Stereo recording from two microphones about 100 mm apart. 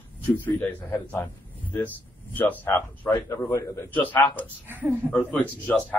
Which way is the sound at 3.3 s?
30° left (ahead or behind).